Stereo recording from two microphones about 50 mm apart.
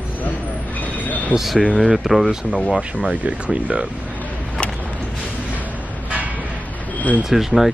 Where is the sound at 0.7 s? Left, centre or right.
Left.